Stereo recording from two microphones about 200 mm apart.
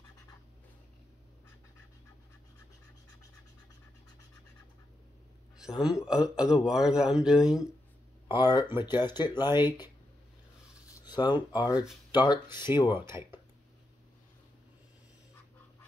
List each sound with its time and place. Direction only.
5.6 s speech: 5° right (ahead or behind)
8.3 s speech: 20° left (ahead or behind)
10.9 s speech: 20° left (ahead or behind)
12.8 s speech: 10° right (ahead or behind)